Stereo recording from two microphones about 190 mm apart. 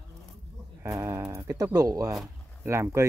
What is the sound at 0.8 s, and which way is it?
Speech, 15° right (ahead or behind).